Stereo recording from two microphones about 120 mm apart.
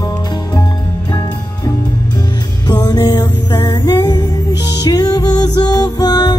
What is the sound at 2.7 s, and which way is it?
Music, 35° left (ahead or behind).